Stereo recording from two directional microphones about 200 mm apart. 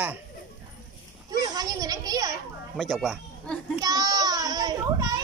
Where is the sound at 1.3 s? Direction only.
20° right (ahead or behind).